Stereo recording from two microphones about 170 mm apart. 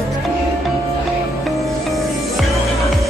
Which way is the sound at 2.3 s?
Centre (ahead or behind).